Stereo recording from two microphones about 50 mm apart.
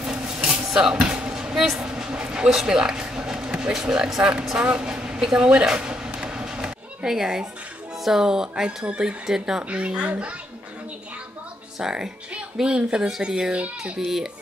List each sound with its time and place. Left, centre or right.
0.0 s dishes: centre
0.7 s basketball bounce: centre
1.8 s vehicle: centre
3.7 s speech: centre
4.6 s a sound: centre
8.0 s speech: centre
9.6 s speech: right
11.8 s speech: centre